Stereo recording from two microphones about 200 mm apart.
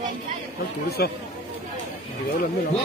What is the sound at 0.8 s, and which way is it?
Speech, 55° left (ahead or behind).